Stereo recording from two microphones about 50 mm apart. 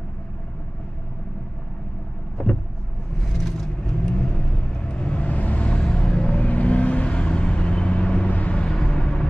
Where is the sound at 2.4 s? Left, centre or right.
Centre.